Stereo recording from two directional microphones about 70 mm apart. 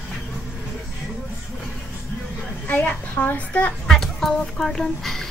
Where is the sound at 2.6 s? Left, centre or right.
Left.